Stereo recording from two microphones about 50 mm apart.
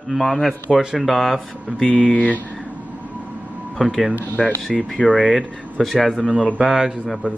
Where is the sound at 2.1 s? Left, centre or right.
Left.